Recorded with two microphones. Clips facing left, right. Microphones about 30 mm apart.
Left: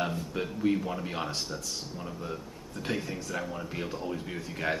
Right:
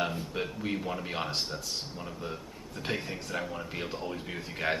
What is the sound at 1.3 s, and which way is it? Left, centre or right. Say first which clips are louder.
Speech: right 1 dB; right.